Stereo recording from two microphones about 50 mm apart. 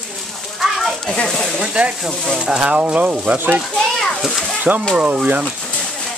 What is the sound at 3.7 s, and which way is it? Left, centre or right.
Speech, centre.